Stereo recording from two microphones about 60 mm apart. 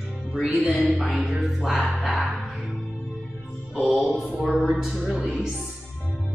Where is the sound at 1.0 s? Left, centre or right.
Centre.